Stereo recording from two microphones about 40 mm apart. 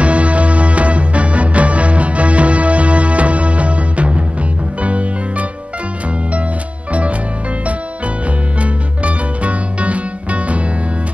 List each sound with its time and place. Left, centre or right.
0.0 s music: right
6.9 s music: right
8.5 s music: right